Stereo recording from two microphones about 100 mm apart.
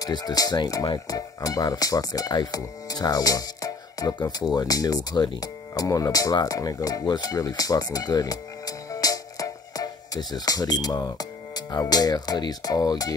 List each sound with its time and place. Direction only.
0.0 s speech: 40° left (ahead or behind)